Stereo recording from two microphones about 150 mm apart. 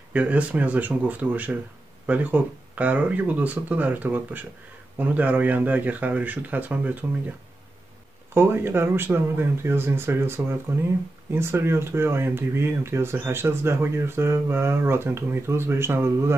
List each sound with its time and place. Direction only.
0.1 s speech: 10° right (ahead or behind)
8.4 s speech: 15° right (ahead or behind)